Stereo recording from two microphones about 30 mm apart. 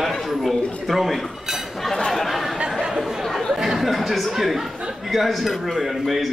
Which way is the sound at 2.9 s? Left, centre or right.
Centre.